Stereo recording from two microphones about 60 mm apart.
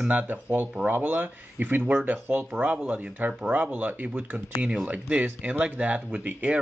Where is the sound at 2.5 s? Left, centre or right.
Centre.